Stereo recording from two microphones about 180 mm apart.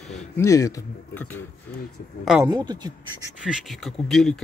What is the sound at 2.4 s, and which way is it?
Speech, 25° right (ahead or behind).